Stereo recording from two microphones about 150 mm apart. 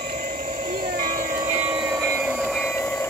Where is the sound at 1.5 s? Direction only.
10° right (ahead or behind).